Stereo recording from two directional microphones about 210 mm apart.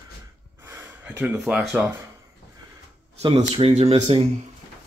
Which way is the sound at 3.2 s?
25° right (ahead or behind).